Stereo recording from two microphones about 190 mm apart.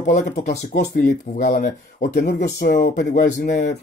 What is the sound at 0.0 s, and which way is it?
Speech, 40° left (ahead or behind).